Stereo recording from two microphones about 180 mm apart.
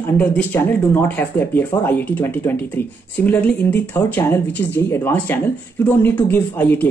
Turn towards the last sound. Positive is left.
turn(degrees=10)  # may be behind; listen again after turning